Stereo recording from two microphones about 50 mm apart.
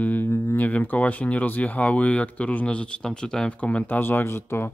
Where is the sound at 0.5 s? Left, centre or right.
Left.